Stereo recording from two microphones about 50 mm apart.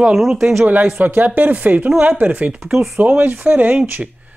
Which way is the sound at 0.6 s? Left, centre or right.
Right.